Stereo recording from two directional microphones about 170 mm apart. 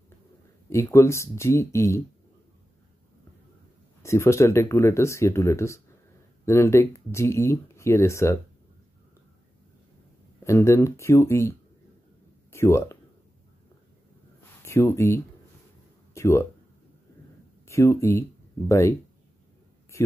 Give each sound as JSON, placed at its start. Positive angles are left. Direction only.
{"t": 0.7, "sound": "speech", "side_deg": 15}
{"t": 4.0, "sound": "speech", "side_deg": 15}
{"t": 10.4, "sound": "speech", "side_deg": 15}
{"t": 12.5, "sound": "speech", "side_deg": 15}
{"t": 14.6, "sound": "speech", "side_deg": 15}
{"t": 16.1, "sound": "a sound", "side_deg": 15}
{"t": 17.6, "sound": "speech", "side_deg": 15}